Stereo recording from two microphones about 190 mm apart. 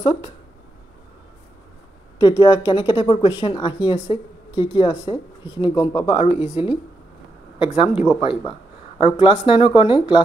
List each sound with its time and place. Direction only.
0.0 s speech: 25° left (ahead or behind)
2.1 s speech: 20° left (ahead or behind)